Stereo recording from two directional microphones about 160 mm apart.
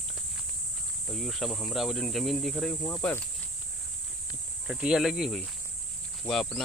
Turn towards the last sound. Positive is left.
turn(degrees=5)  # may be behind; listen again after turning